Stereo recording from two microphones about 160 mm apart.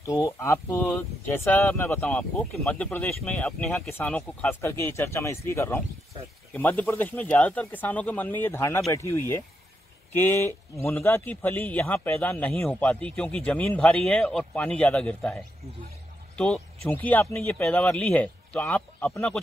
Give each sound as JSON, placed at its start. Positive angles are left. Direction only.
{"t": 0.0, "sound": "speech", "side_deg": 20}